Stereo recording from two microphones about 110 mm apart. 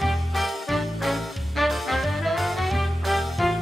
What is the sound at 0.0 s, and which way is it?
Music, centre (ahead or behind).